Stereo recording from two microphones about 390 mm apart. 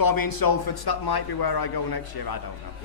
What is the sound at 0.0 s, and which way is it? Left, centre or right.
A man's voice, left.